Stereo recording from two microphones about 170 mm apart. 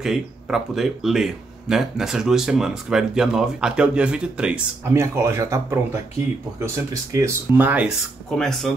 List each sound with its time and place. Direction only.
0.0 s speech: centre (ahead or behind)
8.4 s speech: 5° left (ahead or behind)